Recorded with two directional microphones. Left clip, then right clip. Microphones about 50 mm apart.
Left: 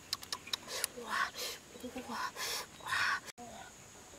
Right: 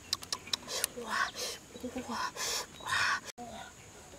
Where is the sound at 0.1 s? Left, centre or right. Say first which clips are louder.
Right 4 dB; centre.